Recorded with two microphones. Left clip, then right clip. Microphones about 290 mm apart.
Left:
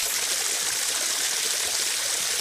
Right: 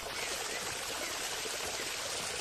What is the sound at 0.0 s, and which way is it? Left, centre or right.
Water, left.